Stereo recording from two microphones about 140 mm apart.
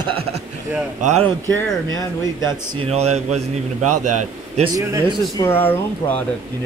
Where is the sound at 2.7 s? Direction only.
45° right (ahead or behind).